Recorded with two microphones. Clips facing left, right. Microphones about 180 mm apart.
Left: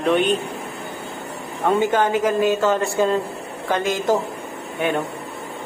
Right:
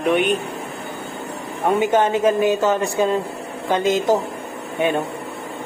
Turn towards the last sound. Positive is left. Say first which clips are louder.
# right 2 dB
turn(degrees=-20)  # may be behind; listen again after turning